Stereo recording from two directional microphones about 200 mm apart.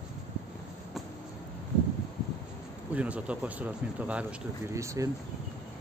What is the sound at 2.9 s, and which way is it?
Speech, 5° right (ahead or behind).